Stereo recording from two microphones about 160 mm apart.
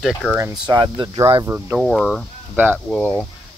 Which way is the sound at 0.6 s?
30° right (ahead or behind).